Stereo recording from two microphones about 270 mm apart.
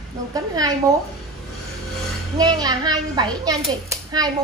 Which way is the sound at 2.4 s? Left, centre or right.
Centre.